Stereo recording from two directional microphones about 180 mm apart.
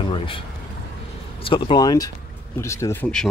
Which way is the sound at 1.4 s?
30° left (ahead or behind).